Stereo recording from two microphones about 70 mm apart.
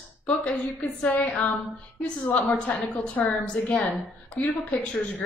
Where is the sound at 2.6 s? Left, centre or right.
Centre.